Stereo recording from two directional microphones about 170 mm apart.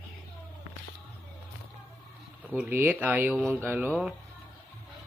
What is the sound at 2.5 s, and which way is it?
Speech, 10° right (ahead or behind).